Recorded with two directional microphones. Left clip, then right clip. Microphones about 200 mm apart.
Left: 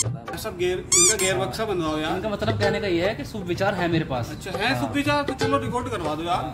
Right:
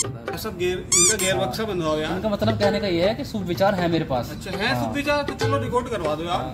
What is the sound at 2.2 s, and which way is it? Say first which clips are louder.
Speech: right 3 dB; 35° right (ahead or behind).